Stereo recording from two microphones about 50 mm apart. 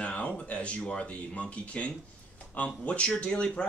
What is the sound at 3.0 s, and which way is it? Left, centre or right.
Speech, centre.